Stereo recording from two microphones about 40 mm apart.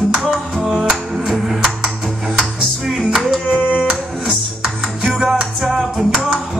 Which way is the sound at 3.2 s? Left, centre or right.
Centre.